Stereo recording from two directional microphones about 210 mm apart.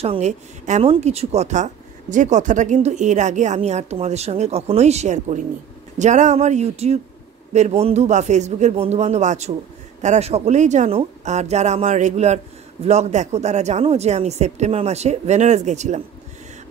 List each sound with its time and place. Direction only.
0.0 s speech: 30° right (ahead or behind)